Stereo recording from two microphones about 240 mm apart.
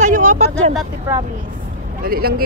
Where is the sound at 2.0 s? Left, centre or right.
Right.